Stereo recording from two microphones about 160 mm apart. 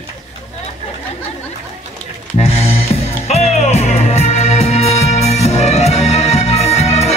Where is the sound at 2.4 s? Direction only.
40° left (ahead or behind).